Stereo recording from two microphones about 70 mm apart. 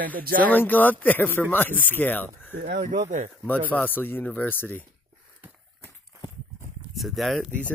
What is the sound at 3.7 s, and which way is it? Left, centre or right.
Speech, left.